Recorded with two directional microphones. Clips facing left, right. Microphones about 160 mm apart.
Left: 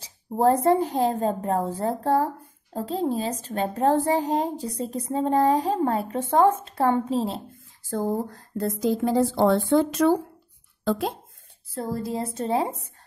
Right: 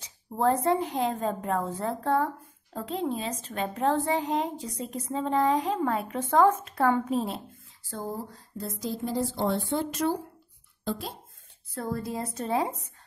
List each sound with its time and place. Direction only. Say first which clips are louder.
0.0 s speech: left 5 dB; 35° left (ahead or behind)
7.9 s speech: left 9 dB; 45° left (ahead or behind)
9.1 s a woman's voice: left 7 dB; 90° left
10.8 s speech: left 8 dB; 65° left (ahead or behind)
11.7 s a woman's voice: left 3 dB; 30° left (ahead or behind)